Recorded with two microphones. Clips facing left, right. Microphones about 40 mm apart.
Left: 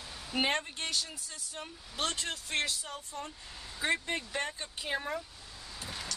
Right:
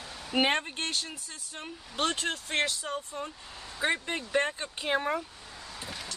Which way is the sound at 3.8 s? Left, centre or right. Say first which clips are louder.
Right 2 dB; right.